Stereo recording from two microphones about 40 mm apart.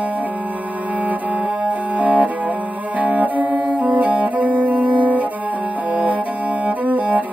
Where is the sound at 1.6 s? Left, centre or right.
Right.